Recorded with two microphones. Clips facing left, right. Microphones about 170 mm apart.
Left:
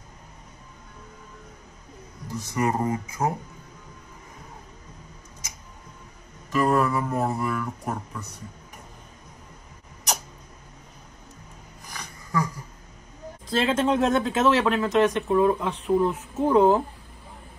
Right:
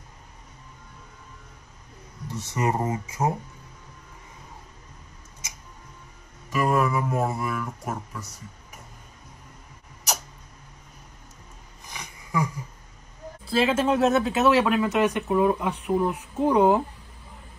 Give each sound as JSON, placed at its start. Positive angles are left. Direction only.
{"t": 2.5, "sound": "speech", "side_deg": -20}
{"t": 6.5, "sound": "speech", "side_deg": -10}
{"t": 11.9, "sound": "a sound", "side_deg": -20}
{"t": 13.5, "sound": "speech", "side_deg": -5}